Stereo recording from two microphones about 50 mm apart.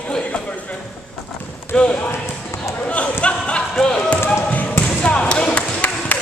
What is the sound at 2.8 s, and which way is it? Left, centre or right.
Speech, left.